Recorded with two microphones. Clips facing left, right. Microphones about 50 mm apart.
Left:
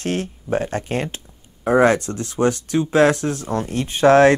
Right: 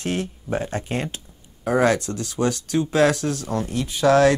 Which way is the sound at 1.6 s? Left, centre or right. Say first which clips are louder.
Left 4 dB; left.